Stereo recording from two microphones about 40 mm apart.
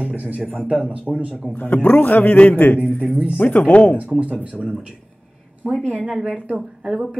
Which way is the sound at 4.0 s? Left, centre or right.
Right.